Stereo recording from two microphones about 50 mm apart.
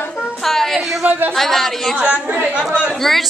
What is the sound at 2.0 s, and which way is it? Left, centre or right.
Speech, right.